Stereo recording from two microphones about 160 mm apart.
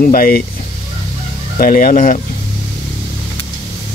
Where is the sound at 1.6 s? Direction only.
60° left (ahead or behind).